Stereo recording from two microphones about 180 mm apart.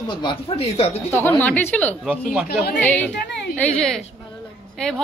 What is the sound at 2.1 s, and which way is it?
Speech, 5° right (ahead or behind).